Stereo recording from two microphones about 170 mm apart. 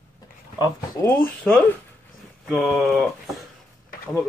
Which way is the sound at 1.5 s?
5° left (ahead or behind).